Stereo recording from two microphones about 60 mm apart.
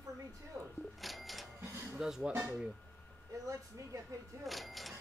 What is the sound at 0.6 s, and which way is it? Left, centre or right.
Speech, centre.